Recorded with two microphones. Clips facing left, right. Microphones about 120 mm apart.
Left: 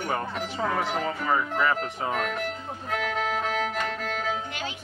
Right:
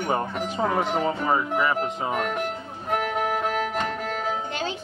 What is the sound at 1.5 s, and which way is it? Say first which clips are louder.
Music: right 2 dB; 15° right (ahead or behind).